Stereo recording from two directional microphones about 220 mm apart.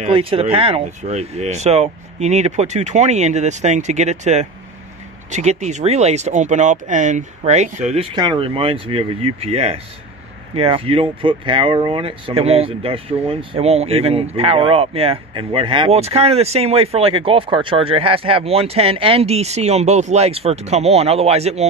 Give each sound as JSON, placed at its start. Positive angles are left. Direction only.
{"t": 0.0, "sound": "speech", "side_deg": -25}